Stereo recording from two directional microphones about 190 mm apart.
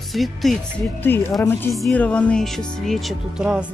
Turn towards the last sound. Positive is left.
turn(degrees=-5)  # may be behind; listen again after turning